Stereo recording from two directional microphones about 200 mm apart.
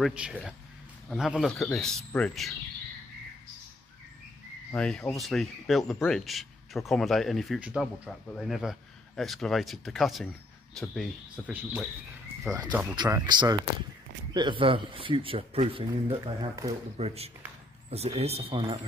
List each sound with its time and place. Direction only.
0.0 s speech: 5° right (ahead or behind)
4.7 s speech: 5° left (ahead or behind)
12.5 s a man's voice: 20° right (ahead or behind)